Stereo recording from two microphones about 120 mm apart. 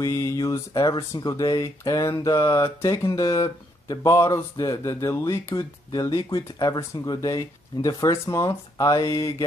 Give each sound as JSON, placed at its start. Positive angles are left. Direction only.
{"t": 0.0, "sound": "speech", "side_deg": 25}